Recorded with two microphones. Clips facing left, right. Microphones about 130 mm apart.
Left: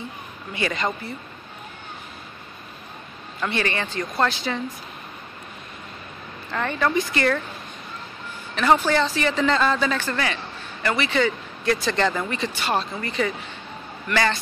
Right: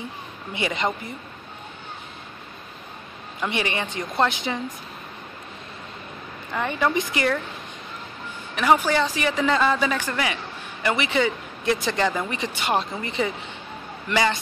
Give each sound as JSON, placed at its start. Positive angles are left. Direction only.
{"t": 0.5, "sound": "a woman's voice", "side_deg": -20}
{"t": 3.3, "sound": "a man's voice", "side_deg": -15}
{"t": 6.5, "sound": "a man's voice", "side_deg": -10}
{"t": 8.5, "sound": "a man's voice", "side_deg": -10}